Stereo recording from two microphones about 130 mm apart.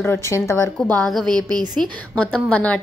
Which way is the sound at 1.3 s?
30° right (ahead or behind).